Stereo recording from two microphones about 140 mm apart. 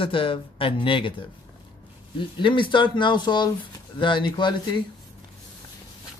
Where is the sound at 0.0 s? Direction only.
40° left (ahead or behind).